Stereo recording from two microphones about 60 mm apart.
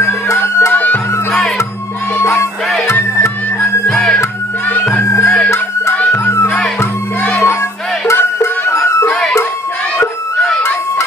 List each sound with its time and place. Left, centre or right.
0.0 s music: left
0.7 s music: left
2.1 s music: left
3.9 s music: centre
5.2 s music: centre
6.1 s music: left